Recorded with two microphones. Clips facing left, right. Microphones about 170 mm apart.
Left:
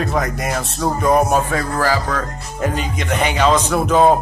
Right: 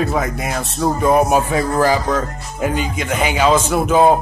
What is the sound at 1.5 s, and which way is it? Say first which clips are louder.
Speech: right 3 dB; 20° right (ahead or behind).